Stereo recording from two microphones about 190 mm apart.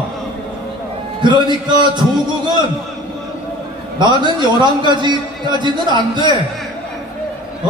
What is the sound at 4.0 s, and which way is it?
A man's voice, 25° right (ahead or behind).